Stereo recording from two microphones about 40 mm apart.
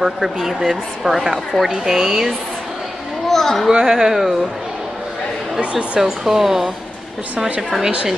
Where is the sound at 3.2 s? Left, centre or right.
Centre.